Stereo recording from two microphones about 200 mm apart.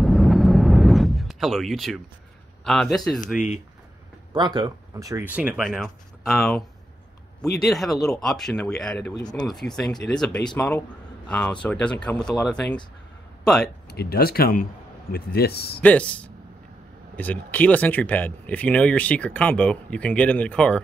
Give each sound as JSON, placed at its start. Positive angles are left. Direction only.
{"t": 0.0, "sound": "a sound", "side_deg": 0}
{"t": 2.6, "sound": "speech", "side_deg": 0}
{"t": 4.3, "sound": "speech", "side_deg": -20}
{"t": 7.6, "sound": "a man's voice", "side_deg": 0}
{"t": 13.4, "sound": "a sound", "side_deg": 0}
{"t": 13.8, "sound": "a man's voice", "side_deg": 50}
{"t": 15.8, "sound": "speech", "side_deg": 5}